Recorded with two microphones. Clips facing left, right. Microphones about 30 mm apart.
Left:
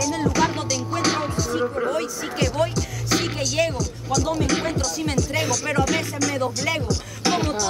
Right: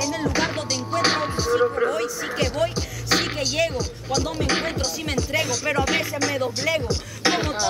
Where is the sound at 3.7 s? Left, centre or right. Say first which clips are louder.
Left 1 dB; right.